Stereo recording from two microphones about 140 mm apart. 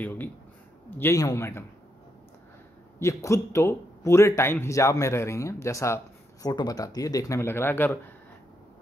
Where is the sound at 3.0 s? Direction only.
20° left (ahead or behind).